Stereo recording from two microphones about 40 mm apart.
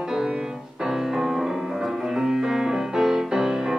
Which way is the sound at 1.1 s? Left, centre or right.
Centre.